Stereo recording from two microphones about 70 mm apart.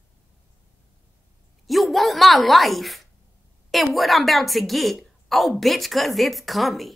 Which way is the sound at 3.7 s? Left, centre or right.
Centre.